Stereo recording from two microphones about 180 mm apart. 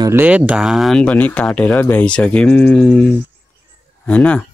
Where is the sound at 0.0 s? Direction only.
10° right (ahead or behind); by 3.1 s 5° left (ahead or behind).